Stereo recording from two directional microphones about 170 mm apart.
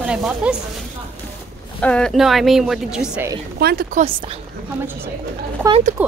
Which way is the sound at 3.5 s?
70° right (ahead or behind).